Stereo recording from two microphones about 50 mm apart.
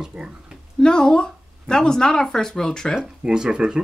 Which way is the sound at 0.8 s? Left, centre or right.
Centre.